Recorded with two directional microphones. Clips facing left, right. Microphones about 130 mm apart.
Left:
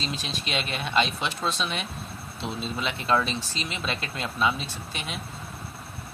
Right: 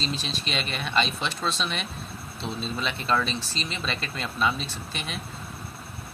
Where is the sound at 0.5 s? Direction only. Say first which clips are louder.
Left 2 dB; 10° left (ahead or behind).